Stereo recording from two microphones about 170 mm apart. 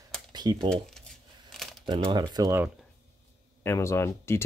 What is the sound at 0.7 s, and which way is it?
Crumpling, 5° left (ahead or behind).